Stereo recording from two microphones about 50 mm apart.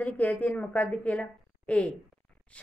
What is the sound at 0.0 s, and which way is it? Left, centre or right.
A woman's voice, left.